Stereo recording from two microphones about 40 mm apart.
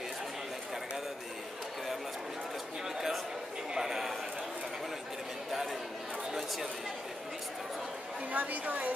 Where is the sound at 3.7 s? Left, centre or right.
Centre.